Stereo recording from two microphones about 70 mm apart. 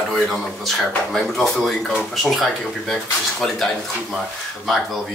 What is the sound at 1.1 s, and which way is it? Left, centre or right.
Speech, centre.